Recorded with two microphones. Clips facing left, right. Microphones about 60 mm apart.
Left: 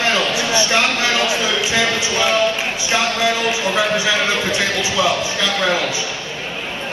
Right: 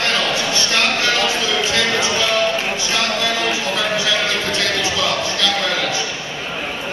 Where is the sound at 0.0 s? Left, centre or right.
Centre.